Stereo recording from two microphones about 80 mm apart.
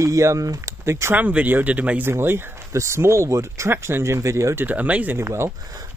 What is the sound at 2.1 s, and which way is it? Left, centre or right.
Speech, right.